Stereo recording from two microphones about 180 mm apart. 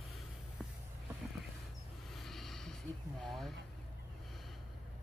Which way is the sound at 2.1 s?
Centre (ahead or behind).